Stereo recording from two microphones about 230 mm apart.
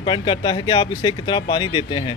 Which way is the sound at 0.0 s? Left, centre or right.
Left.